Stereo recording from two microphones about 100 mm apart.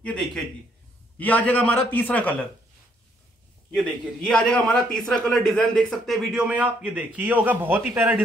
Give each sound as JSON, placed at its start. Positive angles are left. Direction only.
{"t": 0.0, "sound": "a man's voice", "side_deg": 5}
{"t": 3.7, "sound": "a man's voice", "side_deg": 5}